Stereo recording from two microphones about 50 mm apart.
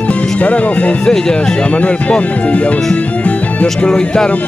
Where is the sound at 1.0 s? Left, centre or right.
Centre.